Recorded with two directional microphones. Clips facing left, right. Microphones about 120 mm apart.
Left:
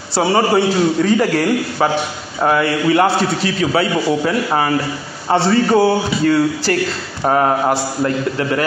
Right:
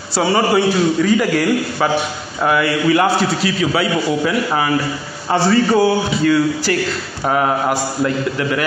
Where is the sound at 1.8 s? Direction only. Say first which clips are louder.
Even; 30° left (ahead or behind).